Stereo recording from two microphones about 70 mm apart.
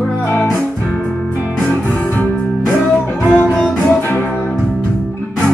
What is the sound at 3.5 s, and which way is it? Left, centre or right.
Music, centre.